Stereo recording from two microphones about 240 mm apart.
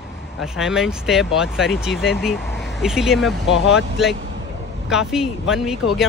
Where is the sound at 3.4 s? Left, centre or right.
Left.